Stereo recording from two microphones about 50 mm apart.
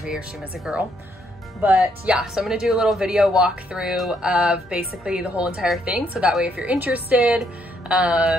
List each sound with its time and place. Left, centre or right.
0.7 s speech: centre
1.6 s speech: right
3.9 s a sound: centre
4.2 s speech: centre